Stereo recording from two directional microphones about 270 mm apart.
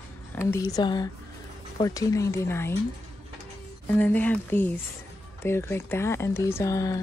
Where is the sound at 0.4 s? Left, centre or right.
Centre.